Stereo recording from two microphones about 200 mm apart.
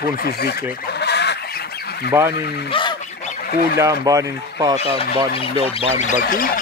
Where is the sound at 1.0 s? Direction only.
55° left (ahead or behind).